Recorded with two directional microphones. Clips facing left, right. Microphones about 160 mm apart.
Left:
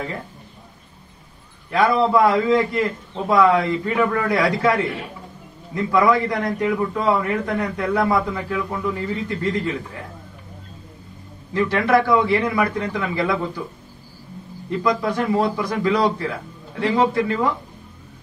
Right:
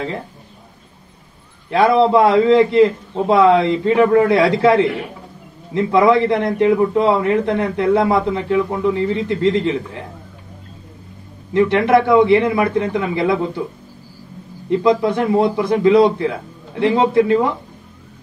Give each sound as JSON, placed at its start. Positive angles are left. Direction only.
{"t": 1.7, "sound": "a man's voice", "side_deg": -30}
{"t": 11.5, "sound": "a man's voice", "side_deg": -20}
{"t": 14.7, "sound": "a man's voice", "side_deg": -25}